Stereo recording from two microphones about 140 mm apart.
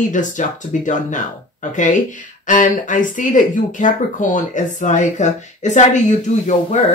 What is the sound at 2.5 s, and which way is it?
Speech, 65° left (ahead or behind).